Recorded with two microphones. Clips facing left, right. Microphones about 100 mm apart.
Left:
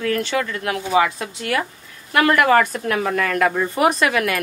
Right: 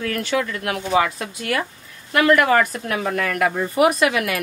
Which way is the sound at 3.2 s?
50° left (ahead or behind).